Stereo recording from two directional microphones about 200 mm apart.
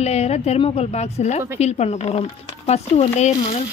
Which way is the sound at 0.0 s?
35° left (ahead or behind).